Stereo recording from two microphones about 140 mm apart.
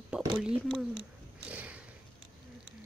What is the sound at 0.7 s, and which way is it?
Speech, 5° right (ahead or behind).